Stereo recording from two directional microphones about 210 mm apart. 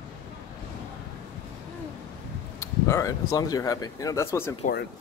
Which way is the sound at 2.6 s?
15° left (ahead or behind).